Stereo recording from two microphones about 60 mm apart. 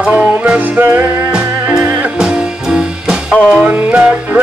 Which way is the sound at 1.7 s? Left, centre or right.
Right.